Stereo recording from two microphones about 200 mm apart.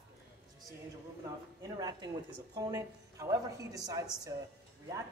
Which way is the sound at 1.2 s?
20° right (ahead or behind).